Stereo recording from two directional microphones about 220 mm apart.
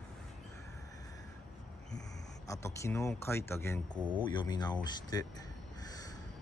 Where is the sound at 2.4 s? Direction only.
15° left (ahead or behind).